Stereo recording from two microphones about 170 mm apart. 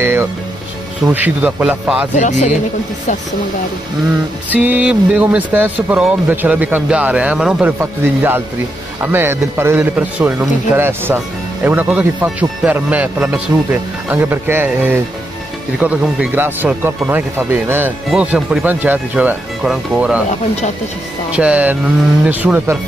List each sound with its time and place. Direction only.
0.0 s speech: 15° right (ahead or behind)
2.1 s speech: 45° left (ahead or behind)
4.5 s speech: 10° right (ahead or behind)
20.2 s speech: 40° left (ahead or behind)
21.4 s speech: 10° right (ahead or behind)